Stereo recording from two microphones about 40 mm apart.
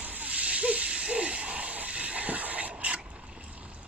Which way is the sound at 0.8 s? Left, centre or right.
Right.